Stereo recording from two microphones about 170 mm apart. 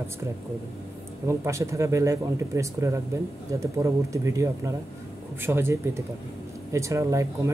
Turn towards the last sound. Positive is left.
turn(degrees=-15)  # may be behind; listen again after turning